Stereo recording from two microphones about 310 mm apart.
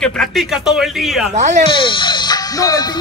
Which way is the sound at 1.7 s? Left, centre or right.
Centre.